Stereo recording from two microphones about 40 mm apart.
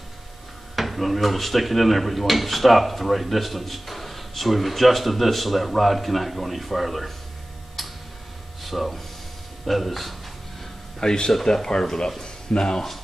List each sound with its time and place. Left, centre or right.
0.7 s speech: centre
8.6 s speech: centre
11.0 s speech: centre